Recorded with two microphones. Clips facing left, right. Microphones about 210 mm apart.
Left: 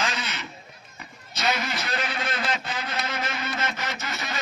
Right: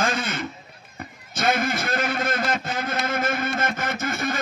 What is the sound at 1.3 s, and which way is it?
Speech, 50° right (ahead or behind).